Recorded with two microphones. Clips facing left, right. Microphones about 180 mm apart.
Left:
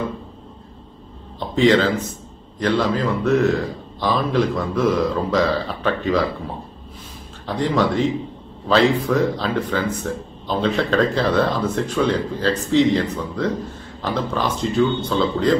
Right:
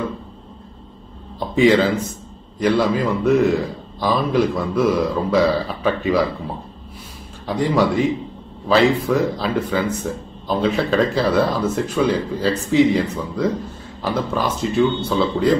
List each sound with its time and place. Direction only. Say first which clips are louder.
1.5 s a man's voice: right 1 dB; 10° right (ahead or behind)
7.4 s a man's voice: right 2 dB; 10° right (ahead or behind)